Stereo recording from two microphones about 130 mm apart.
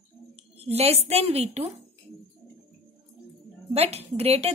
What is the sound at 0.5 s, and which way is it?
Speech, 50° right (ahead or behind).